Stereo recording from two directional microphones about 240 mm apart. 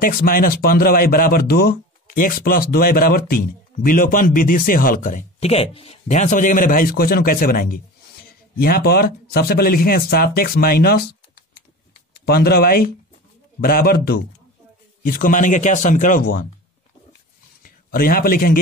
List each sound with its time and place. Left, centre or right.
0.0 s speech: left
12.3 s speech: left
17.6 s a man's voice: left